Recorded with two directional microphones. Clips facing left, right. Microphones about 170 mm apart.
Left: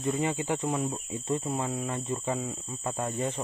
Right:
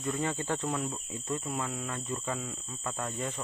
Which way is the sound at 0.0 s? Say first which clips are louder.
Left 4 dB; 15° left (ahead or behind).